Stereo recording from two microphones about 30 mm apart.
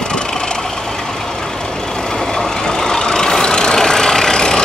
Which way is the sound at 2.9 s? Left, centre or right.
Left.